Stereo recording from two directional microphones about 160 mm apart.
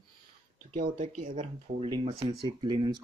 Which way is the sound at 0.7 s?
50° right (ahead or behind).